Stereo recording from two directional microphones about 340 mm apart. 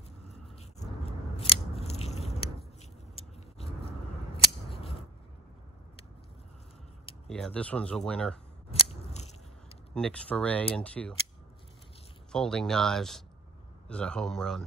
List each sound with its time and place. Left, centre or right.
1.3 s scissors: centre
7.2 s speech: centre
9.1 s biting: centre
9.9 s speech: centre
12.3 s speech: centre